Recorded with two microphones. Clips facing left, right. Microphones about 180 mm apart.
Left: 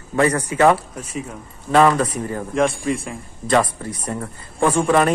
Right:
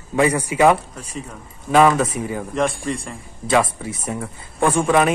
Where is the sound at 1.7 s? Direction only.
5° right (ahead or behind).